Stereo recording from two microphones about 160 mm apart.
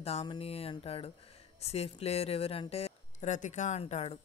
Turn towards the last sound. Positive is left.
turn(degrees=40)  # may be behind; listen again after turning